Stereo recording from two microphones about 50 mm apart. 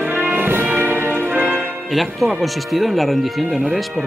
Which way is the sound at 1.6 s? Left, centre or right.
Centre.